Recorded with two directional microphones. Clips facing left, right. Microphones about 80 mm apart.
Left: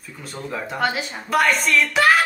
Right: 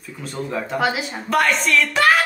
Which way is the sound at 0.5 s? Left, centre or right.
Centre.